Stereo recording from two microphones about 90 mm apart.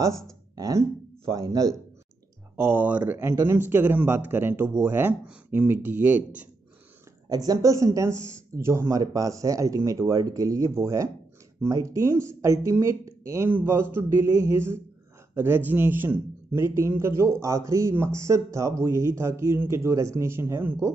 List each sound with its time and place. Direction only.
0.6 s a man's voice: 40° right (ahead or behind)
2.5 s speech: 25° right (ahead or behind)
3.2 s speech: 30° right (ahead or behind)
7.2 s a man's voice: 45° right (ahead or behind)
13.5 s a man's voice: 20° right (ahead or behind)